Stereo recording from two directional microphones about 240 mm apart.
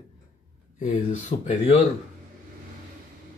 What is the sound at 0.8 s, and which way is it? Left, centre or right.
Speech, left.